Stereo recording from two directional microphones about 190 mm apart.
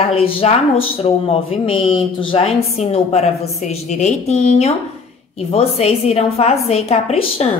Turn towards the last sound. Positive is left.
turn(degrees=35)  # may be behind; listen again after turning